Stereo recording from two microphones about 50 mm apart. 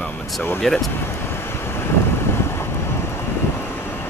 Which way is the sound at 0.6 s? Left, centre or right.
Centre.